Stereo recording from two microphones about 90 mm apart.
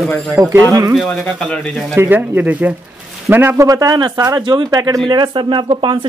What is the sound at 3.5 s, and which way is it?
A man's voice, 40° right (ahead or behind).